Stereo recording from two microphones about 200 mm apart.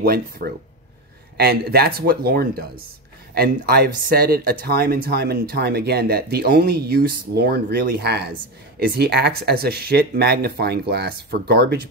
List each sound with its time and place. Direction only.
0.0 s speech: 50° right (ahead or behind)